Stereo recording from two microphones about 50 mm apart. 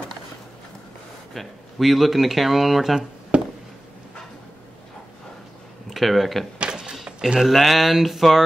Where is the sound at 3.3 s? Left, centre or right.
Right.